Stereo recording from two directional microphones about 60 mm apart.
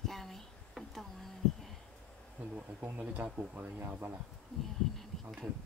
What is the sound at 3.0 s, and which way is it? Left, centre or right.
Speech, centre.